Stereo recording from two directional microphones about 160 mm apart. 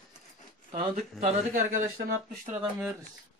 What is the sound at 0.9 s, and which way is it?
Speech, 50° right (ahead or behind).